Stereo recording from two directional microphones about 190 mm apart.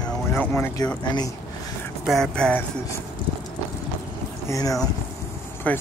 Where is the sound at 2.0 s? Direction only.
Centre (ahead or behind).